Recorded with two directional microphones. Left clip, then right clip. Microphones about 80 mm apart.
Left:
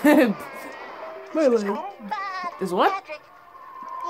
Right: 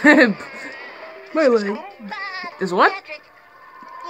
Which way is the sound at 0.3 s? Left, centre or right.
Left.